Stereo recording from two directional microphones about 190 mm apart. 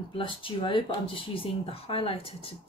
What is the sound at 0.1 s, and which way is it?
Speech, 25° left (ahead or behind).